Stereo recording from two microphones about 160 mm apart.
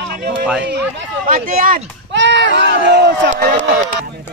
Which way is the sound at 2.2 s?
90° right.